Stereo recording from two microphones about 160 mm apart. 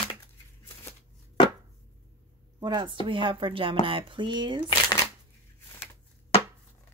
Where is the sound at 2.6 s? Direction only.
30° right (ahead or behind).